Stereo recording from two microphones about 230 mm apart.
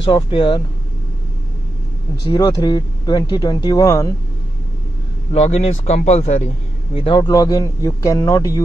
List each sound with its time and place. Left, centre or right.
0.1 s a man's voice: left
2.3 s speech: centre
5.3 s a man's voice: left